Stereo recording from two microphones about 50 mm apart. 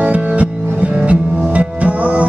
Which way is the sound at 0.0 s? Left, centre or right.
Right.